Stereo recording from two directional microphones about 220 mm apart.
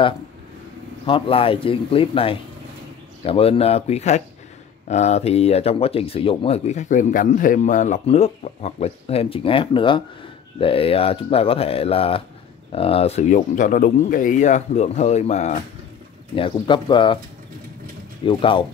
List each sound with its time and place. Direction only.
1.0 s speech: 25° left (ahead or behind)
18.2 s speech: 25° left (ahead or behind)